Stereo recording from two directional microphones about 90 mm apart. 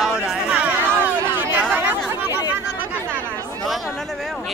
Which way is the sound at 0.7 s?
20° right (ahead or behind).